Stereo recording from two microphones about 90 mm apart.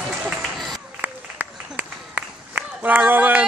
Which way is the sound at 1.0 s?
15° right (ahead or behind).